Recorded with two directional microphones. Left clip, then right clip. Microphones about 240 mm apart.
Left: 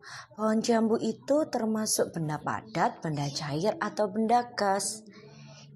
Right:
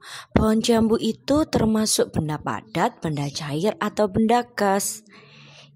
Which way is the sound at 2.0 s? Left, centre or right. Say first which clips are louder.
Right 6 dB; right.